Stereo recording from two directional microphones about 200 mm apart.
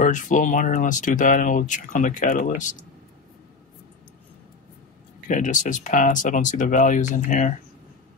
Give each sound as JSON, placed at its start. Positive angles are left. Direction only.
{"t": 0.0, "sound": "speech", "side_deg": 40}
{"t": 5.3, "sound": "speech", "side_deg": 40}